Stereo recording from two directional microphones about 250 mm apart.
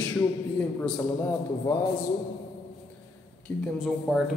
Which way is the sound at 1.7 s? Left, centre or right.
Centre.